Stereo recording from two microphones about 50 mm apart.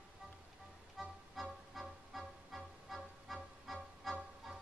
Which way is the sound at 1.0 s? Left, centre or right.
Centre.